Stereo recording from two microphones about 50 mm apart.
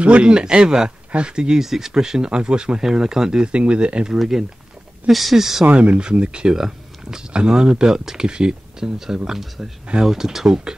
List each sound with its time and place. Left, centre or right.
0.0 s speech: right
4.2 s speech: centre
5.7 s speech: right